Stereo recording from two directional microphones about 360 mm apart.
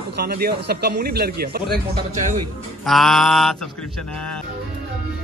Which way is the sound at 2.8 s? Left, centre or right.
Centre.